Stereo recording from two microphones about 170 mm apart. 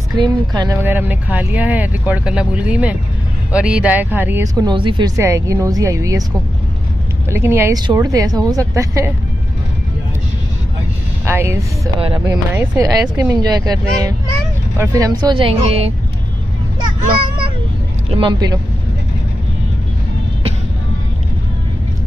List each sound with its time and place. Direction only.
0.1 s speech: 25° right (ahead or behind)
0.8 s speech: 10° right (ahead or behind)
7.2 s speech: 15° right (ahead or behind)
11.2 s speech: 15° right (ahead or behind); by 15.9 s 35° right (ahead or behind)
18.1 s speech: 25° right (ahead or behind)